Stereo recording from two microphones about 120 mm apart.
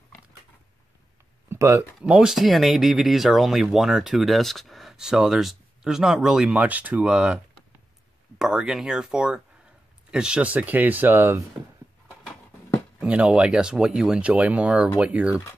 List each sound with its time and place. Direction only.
1.5 s speech: 20° right (ahead or behind)
2.0 s speech: 5° right (ahead or behind)
8.4 s speech: 5° right (ahead or behind)
13.0 s speech: 10° right (ahead or behind)